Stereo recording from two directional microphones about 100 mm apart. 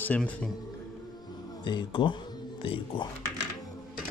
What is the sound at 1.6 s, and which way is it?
Speech, 50° left (ahead or behind).